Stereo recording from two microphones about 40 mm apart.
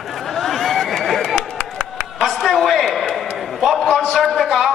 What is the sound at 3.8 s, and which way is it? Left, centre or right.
Speech, centre.